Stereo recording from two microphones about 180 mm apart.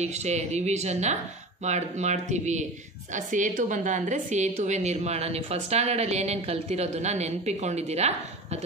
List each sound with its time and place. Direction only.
0.0 s a woman's voice: 40° right (ahead or behind)